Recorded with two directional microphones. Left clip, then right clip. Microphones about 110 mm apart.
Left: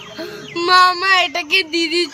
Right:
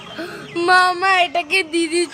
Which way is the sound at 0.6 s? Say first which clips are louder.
Left 2 dB; 35° right (ahead or behind).